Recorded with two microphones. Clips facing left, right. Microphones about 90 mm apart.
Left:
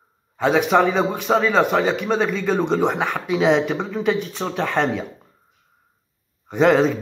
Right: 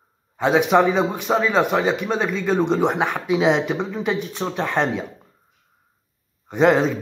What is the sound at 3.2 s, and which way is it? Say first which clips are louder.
A man's voice: left 1 dB; 10° right (ahead or behind).